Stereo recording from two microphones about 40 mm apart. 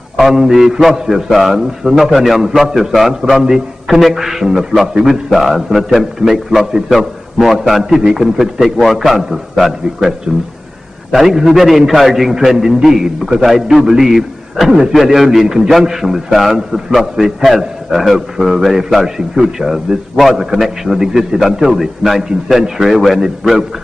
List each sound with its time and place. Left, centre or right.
0.2 s a man's voice: centre
3.3 s a man's voice: centre
9.9 s a man's voice: centre